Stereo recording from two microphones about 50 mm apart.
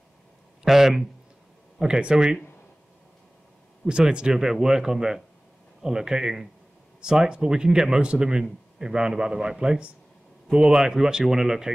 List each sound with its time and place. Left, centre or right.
0.7 s speech: centre
3.8 s speech: centre